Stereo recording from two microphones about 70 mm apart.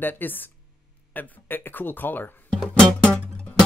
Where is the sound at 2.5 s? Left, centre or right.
Centre.